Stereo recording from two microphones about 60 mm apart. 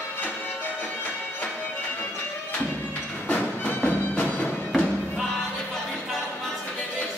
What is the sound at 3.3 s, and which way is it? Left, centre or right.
Music, left.